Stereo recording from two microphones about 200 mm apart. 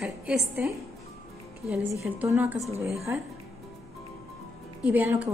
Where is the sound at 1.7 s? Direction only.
10° right (ahead or behind).